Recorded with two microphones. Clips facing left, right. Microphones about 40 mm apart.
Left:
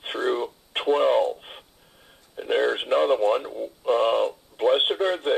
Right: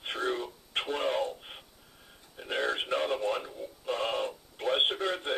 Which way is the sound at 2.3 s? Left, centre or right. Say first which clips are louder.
Left 9 dB; left.